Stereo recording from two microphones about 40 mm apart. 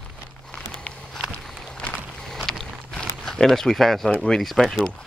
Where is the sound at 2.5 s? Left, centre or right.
Centre.